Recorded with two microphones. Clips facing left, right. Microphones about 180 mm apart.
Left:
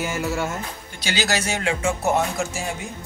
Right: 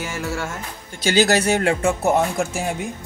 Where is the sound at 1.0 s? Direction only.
55° right (ahead or behind).